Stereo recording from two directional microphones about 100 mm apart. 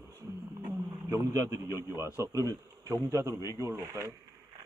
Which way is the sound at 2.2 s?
30° right (ahead or behind).